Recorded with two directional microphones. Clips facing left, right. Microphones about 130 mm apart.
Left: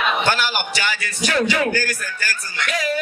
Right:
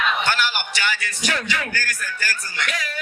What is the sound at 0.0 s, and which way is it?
A man's voice, 35° left (ahead or behind).